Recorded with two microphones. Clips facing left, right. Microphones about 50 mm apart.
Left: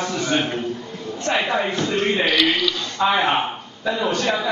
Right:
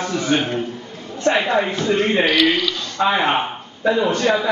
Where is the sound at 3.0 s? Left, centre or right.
Right.